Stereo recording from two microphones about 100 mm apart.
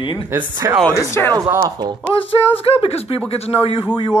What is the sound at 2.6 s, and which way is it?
Speech, 80° left.